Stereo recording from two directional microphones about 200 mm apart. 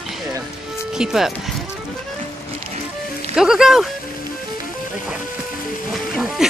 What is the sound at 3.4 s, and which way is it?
Speech, 5° right (ahead or behind).